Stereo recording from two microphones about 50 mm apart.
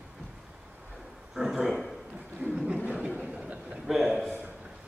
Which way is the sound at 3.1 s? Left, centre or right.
Right.